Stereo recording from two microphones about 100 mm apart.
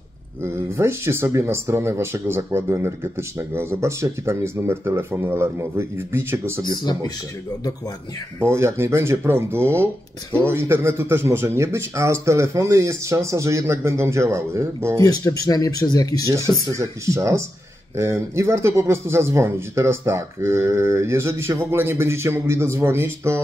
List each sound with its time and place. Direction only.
0.4 s speech: 25° right (ahead or behind)
6.8 s speech: 40° left (ahead or behind)
8.5 s speech: 25° right (ahead or behind)
15.0 s speech: 40° left (ahead or behind)
16.7 s speech: 30° right (ahead or behind)